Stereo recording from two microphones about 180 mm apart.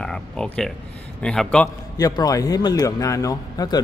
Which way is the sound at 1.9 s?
20° left (ahead or behind).